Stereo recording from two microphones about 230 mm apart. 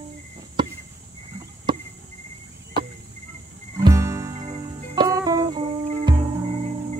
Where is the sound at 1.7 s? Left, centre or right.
Right.